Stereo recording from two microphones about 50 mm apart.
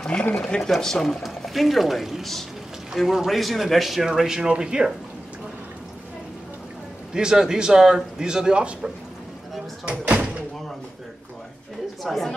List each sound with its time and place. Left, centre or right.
0.6 s a man's voice: centre
7.2 s a man's voice: centre
9.8 s door: right
12.0 s speech: centre